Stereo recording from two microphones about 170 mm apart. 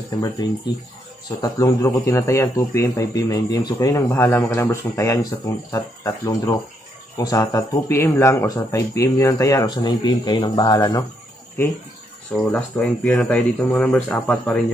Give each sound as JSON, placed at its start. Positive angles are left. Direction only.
{"t": 1.4, "sound": "a man's voice", "side_deg": 20}
{"t": 12.4, "sound": "speech", "side_deg": 10}